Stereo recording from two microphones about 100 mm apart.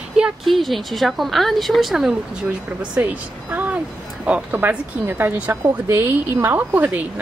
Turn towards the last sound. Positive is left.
turn(degrees=-15)  # may be behind; listen again after turning